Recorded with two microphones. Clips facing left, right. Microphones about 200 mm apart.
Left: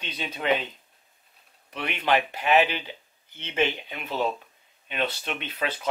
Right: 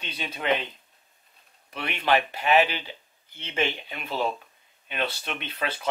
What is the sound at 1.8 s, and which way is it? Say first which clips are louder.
Speech: even; 10° left (ahead or behind).